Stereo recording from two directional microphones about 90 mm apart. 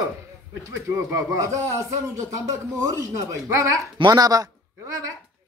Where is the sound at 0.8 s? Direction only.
35° right (ahead or behind).